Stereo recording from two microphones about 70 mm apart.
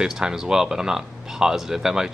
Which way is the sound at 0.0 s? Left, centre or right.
Centre.